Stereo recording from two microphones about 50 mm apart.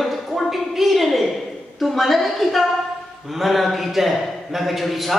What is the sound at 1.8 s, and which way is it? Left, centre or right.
A man's voice, centre.